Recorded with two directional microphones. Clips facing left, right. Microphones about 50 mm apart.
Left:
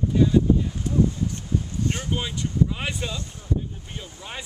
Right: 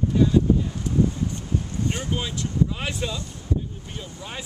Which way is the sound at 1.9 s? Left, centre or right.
Centre.